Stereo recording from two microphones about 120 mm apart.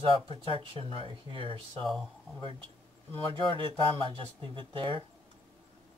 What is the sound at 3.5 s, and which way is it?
Speech, 45° right (ahead or behind).